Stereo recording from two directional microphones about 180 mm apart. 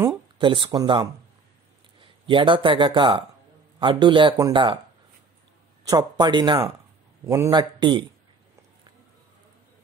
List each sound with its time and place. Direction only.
0.4 s speech: 25° right (ahead or behind)
5.9 s speech: 25° right (ahead or behind)
7.2 s speech: 15° right (ahead or behind)